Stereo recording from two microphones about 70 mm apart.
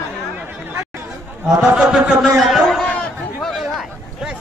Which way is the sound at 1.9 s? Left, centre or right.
Centre.